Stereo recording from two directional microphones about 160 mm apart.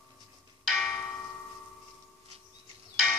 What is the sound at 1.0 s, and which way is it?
Tubular bells, 10° left (ahead or behind).